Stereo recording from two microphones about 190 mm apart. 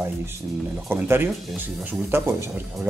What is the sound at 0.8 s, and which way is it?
Speech, 10° right (ahead or behind).